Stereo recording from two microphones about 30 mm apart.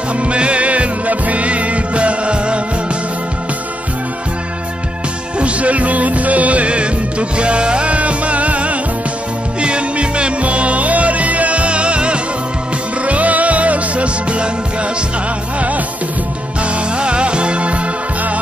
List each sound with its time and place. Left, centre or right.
0.2 s music: right
5.4 s music: right
9.6 s music: right
13.0 s music: right
16.9 s music: right